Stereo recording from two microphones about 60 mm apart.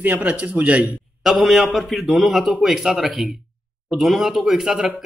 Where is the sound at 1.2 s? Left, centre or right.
Centre.